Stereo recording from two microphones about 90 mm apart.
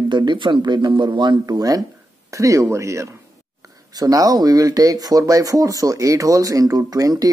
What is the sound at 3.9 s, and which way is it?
Speech, 45° right (ahead or behind).